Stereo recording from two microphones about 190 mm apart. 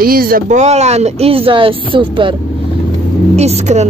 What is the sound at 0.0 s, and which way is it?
Speech, 50° right (ahead or behind).